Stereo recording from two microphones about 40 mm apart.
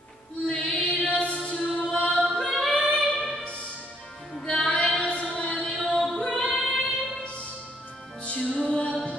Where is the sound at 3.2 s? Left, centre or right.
Centre.